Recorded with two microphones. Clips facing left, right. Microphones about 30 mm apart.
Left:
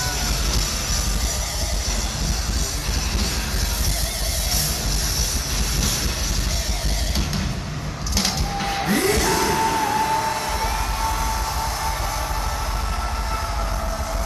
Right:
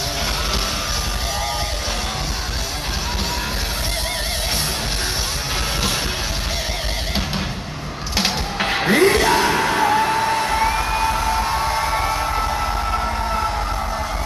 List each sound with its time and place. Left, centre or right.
8.2 s music: right